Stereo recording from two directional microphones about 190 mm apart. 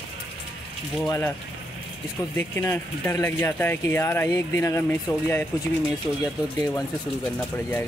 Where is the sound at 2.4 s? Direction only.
10° left (ahead or behind).